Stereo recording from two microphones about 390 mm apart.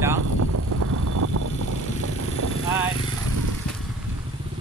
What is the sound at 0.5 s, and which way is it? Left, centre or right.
Vehicle, right.